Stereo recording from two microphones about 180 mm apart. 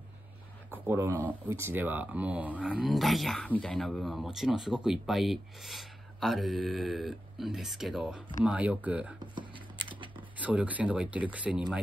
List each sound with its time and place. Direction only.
0.8 s speech: 10° right (ahead or behind)
9.3 s a sound: 25° right (ahead or behind)
10.4 s speech: 10° right (ahead or behind)